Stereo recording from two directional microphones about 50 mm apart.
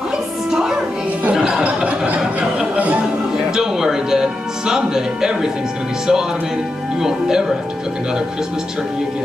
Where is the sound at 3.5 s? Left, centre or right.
Centre.